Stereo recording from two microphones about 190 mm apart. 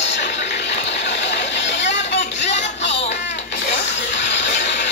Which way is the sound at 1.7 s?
70° left (ahead or behind).